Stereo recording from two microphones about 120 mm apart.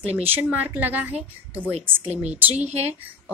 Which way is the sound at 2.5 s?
65° right (ahead or behind).